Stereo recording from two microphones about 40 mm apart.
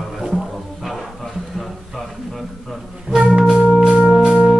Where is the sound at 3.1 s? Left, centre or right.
Centre.